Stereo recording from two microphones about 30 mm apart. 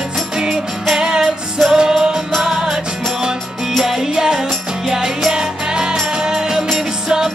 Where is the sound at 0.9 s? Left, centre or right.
Right.